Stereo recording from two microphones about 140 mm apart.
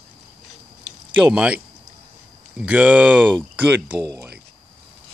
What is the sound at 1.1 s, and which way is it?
Speech, 10° right (ahead or behind).